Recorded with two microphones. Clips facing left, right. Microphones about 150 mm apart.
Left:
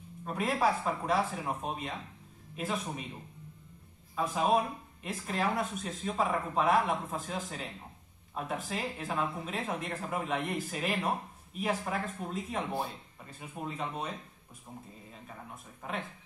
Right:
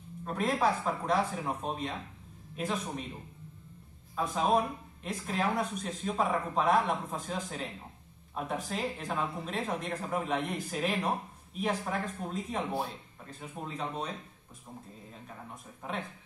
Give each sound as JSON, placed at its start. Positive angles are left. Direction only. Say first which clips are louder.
{"t": 0.2, "sound": "speech", "louder": "right 1 dB", "side_deg": 5}
{"t": 4.1, "sound": "speech", "louder": "even", "side_deg": 0}
{"t": 15.2, "sound": "speech", "louder": "even", "side_deg": 0}